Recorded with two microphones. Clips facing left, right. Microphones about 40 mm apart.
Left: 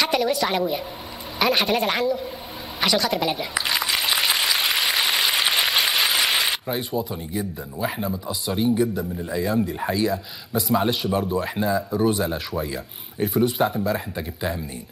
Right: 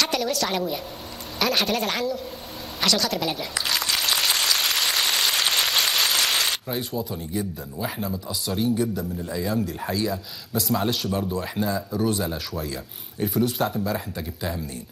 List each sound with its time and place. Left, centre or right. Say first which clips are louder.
0.0 s a woman's voice: left 3 dB; centre
2.8 s a sound: left 2 dB; centre
9.6 s speech: left 3 dB; centre
10.7 s speech: left 3 dB; centre